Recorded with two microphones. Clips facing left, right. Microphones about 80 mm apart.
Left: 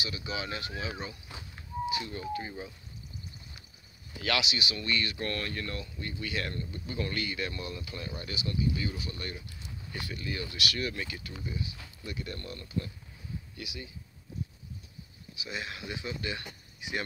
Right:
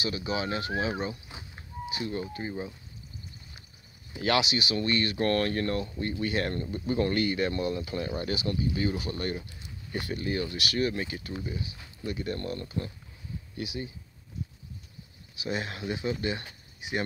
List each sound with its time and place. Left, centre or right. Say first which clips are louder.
0.0 s speech: right 6 dB; right
4.2 s speech: right 5 dB; right
8.3 s speech: right 3 dB; right
15.3 s speech: right 6 dB; right